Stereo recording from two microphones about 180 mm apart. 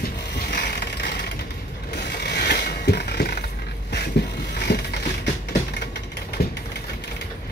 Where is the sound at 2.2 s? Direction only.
65° left (ahead or behind).